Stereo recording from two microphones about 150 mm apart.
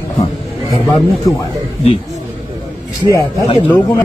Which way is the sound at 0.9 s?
20° left (ahead or behind).